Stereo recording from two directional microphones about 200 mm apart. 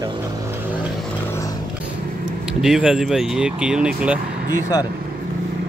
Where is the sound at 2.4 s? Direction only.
5° right (ahead or behind).